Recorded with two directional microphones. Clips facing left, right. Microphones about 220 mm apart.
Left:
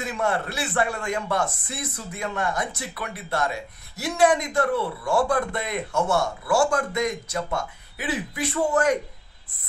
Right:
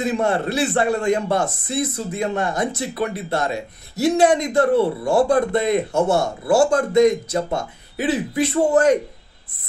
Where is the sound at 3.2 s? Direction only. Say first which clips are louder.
Right 4 dB; 20° right (ahead or behind).